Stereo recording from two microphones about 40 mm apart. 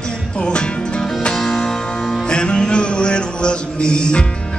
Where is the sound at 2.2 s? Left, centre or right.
Left.